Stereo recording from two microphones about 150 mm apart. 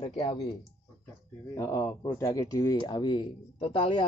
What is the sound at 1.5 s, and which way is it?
Speech, 20° left (ahead or behind).